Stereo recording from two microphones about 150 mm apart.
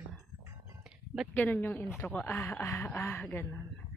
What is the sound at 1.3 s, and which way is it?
Speech, 10° left (ahead or behind).